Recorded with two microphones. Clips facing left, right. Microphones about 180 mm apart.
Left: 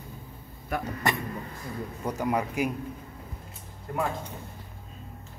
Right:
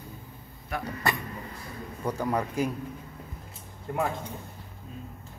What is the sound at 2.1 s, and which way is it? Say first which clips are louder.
Speech: even; 15° left (ahead or behind).